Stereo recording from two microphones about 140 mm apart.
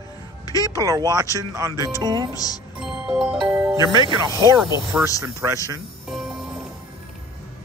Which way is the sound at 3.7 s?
25° right (ahead or behind).